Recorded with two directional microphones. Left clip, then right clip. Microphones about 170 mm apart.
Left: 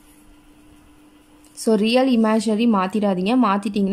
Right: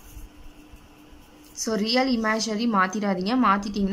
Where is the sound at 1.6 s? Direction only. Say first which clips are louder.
Left 6 dB; 25° left (ahead or behind).